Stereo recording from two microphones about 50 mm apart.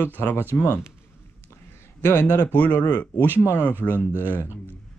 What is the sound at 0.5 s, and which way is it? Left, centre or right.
Speech, left.